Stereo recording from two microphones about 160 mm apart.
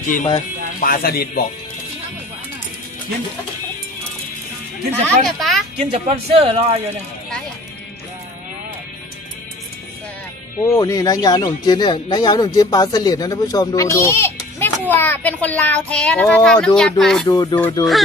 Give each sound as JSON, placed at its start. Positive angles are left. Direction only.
{"t": 0.0, "sound": "speech", "side_deg": 55}
{"t": 5.0, "sound": "speech", "side_deg": 0}
{"t": 5.8, "sound": "speech", "side_deg": -40}
{"t": 10.6, "sound": "speech", "side_deg": 20}
{"t": 17.3, "sound": "speech", "side_deg": 25}